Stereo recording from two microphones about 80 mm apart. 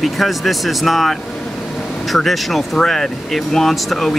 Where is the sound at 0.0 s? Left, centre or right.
Centre.